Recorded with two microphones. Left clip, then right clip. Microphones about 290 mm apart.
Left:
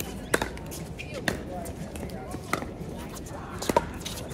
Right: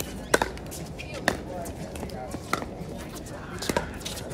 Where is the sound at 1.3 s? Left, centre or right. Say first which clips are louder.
Right 4 dB; right.